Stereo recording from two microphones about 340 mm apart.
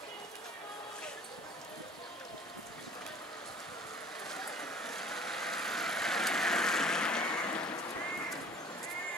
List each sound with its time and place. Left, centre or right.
4.3 s vehicle: centre